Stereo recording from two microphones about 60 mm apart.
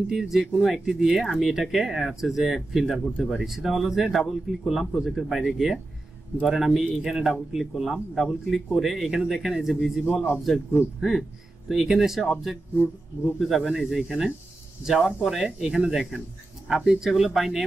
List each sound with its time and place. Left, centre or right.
0.1 s speech: centre